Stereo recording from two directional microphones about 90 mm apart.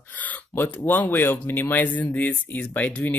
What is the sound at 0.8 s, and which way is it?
Speech, 20° left (ahead or behind).